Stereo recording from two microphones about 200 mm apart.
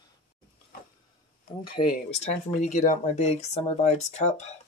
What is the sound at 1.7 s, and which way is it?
Speech, 30° left (ahead or behind).